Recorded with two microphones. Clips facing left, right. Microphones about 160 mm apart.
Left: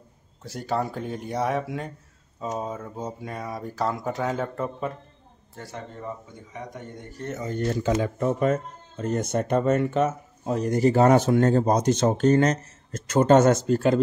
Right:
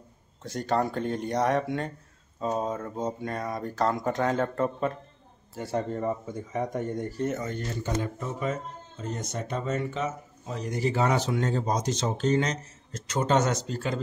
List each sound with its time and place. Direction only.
0.4 s speech: 5° left (ahead or behind)
5.8 s speech: 45° right (ahead or behind)
7.2 s speech: 20° right (ahead or behind)
7.7 s speech: 90° left; by 13.9 s 50° left (ahead or behind)